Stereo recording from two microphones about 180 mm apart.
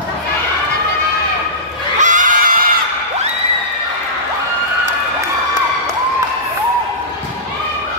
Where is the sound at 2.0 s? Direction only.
45° right (ahead or behind).